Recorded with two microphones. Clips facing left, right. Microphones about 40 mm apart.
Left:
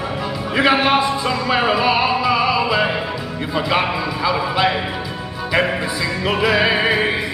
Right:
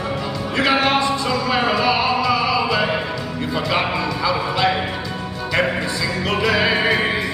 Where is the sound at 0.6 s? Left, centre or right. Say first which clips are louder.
Left 2 dB; centre.